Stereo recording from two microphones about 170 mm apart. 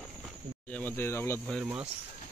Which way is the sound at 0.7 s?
10° left (ahead or behind).